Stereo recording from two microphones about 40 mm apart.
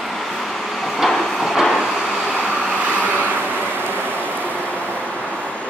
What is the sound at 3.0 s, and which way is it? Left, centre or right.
Vehicle, right.